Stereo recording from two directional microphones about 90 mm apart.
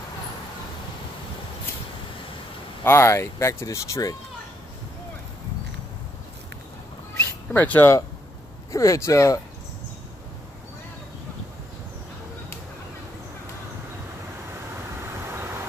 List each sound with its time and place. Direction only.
2.8 s speech: 30° left (ahead or behind)
7.5 s speech: 20° left (ahead or behind)
8.7 s speech: 35° left (ahead or behind)